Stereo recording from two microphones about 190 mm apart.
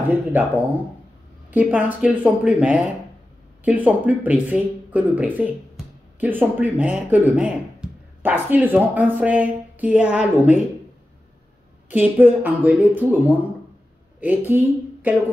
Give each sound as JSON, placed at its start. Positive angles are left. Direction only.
{"t": 0.1, "sound": "speech", "side_deg": -10}
{"t": 1.5, "sound": "speech", "side_deg": -5}
{"t": 11.9, "sound": "speech", "side_deg": -10}
{"t": 14.5, "sound": "a woman's voice", "side_deg": -10}